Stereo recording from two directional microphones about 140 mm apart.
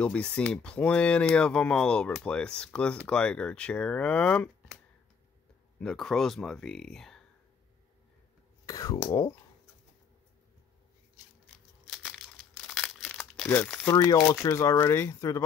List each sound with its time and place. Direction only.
0.0 s speech: 10° left (ahead or behind)
5.8 s speech: 5° left (ahead or behind)
8.6 s speech: 25° left (ahead or behind)
12.1 s crumpling: 5° left (ahead or behind)
13.8 s speech: 25° left (ahead or behind)